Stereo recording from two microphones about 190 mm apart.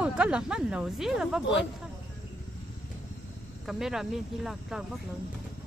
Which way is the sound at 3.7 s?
Centre (ahead or behind).